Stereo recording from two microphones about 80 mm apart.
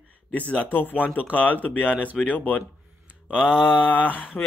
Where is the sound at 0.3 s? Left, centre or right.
Centre.